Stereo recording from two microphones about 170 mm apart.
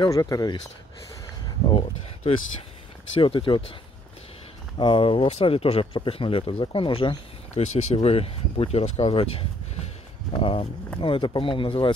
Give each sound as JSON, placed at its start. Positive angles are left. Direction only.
{"t": 0.0, "sound": "speech", "side_deg": 20}
{"t": 1.7, "sound": "speech", "side_deg": 30}
{"t": 4.7, "sound": "speech", "side_deg": 30}